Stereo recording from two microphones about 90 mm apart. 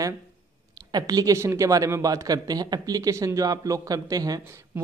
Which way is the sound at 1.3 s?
30° right (ahead or behind).